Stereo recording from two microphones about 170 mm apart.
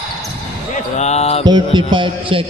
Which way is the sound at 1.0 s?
40° left (ahead or behind).